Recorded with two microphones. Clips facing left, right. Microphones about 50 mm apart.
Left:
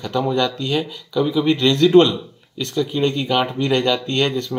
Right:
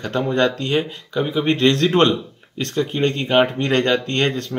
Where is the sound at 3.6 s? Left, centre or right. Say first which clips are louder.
Even; right.